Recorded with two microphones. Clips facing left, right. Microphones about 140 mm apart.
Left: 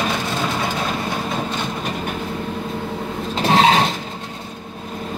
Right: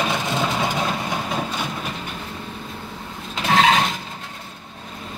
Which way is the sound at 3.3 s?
35° left (ahead or behind).